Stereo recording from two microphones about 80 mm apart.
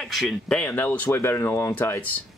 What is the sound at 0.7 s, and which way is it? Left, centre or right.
Speech, left.